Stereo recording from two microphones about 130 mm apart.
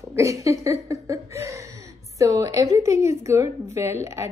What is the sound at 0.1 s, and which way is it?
A woman's voice, 25° right (ahead or behind).